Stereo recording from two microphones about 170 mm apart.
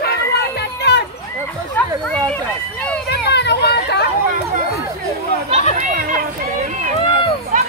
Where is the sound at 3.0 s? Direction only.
80° left.